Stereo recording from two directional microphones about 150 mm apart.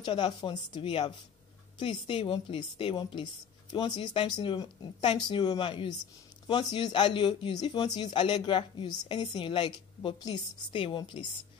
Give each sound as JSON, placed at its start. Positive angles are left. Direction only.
{"t": 0.0, "sound": "speech", "side_deg": 30}